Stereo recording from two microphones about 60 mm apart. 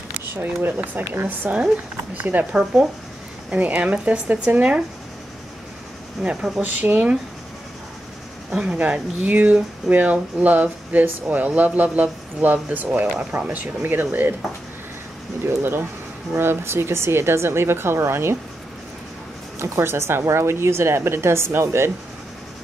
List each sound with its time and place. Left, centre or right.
0.4 s speech: right
2.5 s speech: centre
6.2 s speech: centre
6.6 s speech: right
8.5 s speech: centre; by 14.3 s right
15.4 s speech: right
19.6 s speech: right